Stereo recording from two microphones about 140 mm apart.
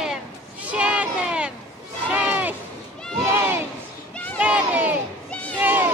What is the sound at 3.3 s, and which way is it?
Crowd, 15° right (ahead or behind).